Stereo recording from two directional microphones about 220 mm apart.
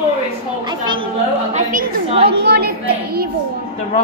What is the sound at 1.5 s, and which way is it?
Chatter, 30° right (ahead or behind).